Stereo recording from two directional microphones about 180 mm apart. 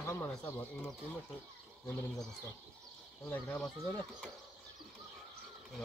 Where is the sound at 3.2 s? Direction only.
5° left (ahead or behind).